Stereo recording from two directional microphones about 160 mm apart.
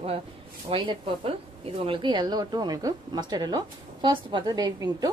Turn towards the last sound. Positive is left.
turn(degrees=-25)  # may be behind; listen again after turning